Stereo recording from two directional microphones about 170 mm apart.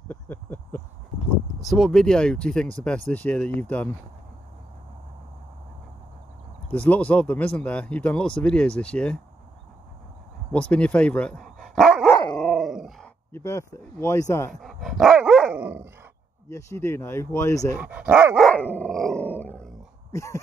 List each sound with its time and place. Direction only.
0.1 s a sound: 10° left (ahead or behind)
1.6 s speech: centre (ahead or behind)
6.7 s speech: 10° left (ahead or behind)
10.7 s speech: 5° left (ahead or behind)
12.4 s dog: centre (ahead or behind)
13.3 s speech: 15° left (ahead or behind)
14.5 s dog: centre (ahead or behind)
16.4 s speech: 15° left (ahead or behind)
17.7 s speech: 10° right (ahead or behind)
18.5 s dog: 10° left (ahead or behind)
20.1 s speech: 20° left (ahead or behind)